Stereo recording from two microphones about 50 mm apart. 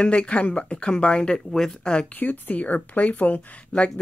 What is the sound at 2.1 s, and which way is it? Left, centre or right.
Speech, left.